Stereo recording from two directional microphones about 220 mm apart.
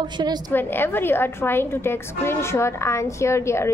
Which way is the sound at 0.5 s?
10° left (ahead or behind).